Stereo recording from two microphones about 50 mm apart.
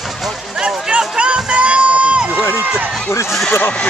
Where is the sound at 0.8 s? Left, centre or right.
Right.